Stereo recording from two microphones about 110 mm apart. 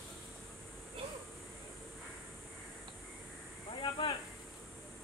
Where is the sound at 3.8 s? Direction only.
45° left (ahead or behind).